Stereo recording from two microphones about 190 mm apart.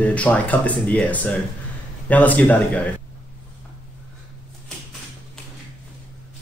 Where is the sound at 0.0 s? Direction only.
5° left (ahead or behind).